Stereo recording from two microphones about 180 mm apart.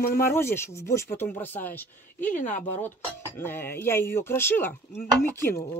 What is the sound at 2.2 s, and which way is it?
Speech, 45° left (ahead or behind).